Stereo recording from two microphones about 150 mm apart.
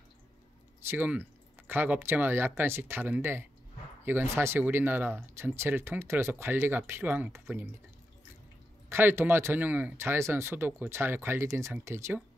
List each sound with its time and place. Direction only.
0.8 s speech: 10° right (ahead or behind)
8.8 s speech: 15° right (ahead or behind)